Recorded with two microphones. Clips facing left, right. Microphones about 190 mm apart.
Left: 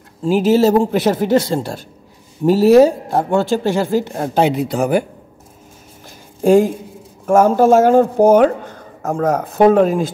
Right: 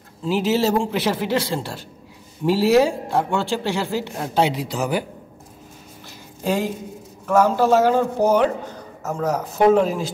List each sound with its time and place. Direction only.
0.2 s a man's voice: 45° left (ahead or behind)
6.4 s a man's voice: 50° left (ahead or behind)